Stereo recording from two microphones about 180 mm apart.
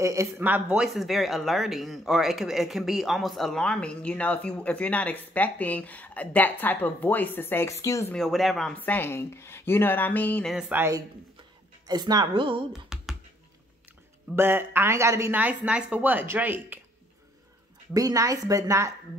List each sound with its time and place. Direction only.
0.0 s speech: 15° right (ahead or behind); by 8.1 s 15° left (ahead or behind)
8.1 s speech: centre (ahead or behind)
10.5 s speech: 5° right (ahead or behind)
10.8 s a woman's voice: 20° right (ahead or behind)
12.7 s computer keyboard: 5° right (ahead or behind)
14.3 s a woman's voice: 10° right (ahead or behind)
17.9 s a woman's voice: 20° right (ahead or behind)